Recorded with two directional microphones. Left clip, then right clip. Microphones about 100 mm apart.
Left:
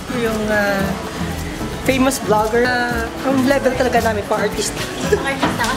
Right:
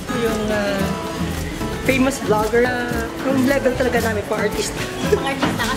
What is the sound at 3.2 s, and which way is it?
A woman's voice, 5° left (ahead or behind).